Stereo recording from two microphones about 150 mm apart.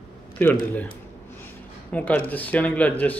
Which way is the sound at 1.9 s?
10° left (ahead or behind).